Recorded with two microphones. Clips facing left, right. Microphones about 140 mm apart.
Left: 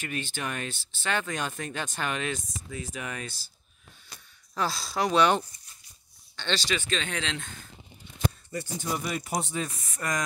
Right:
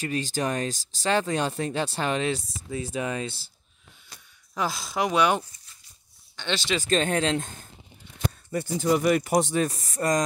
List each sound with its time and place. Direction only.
0.0 s speech: 35° right (ahead or behind)
4.6 s speech: 15° right (ahead or behind)
6.8 s speech: 45° right (ahead or behind)
8.5 s speech: 60° right (ahead or behind)
9.7 s speech: 35° right (ahead or behind)